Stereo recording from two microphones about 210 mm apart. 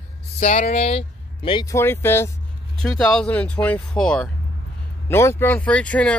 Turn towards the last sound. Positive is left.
turn(degrees=5)  # may be behind; listen again after turning